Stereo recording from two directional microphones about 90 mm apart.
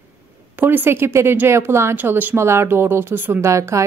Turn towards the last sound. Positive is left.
turn(degrees=-35)  # may be behind; listen again after turning